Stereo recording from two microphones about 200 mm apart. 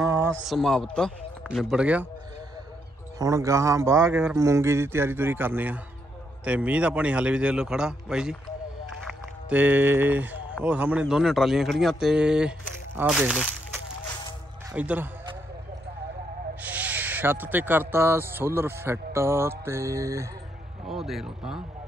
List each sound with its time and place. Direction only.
0.0 s a sound: 15° right (ahead or behind)
0.5 s speech: centre (ahead or behind)
3.2 s speech: 15° right (ahead or behind)
9.5 s speech: 10° right (ahead or behind)
14.7 s a man's voice: 10° right (ahead or behind)
16.6 s speech: 10° right (ahead or behind)
20.8 s speech: centre (ahead or behind)